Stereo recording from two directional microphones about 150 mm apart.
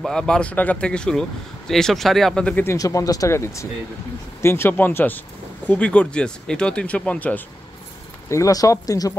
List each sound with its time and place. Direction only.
0.0 s speech: 5° left (ahead or behind)
8.3 s speech: 20° left (ahead or behind)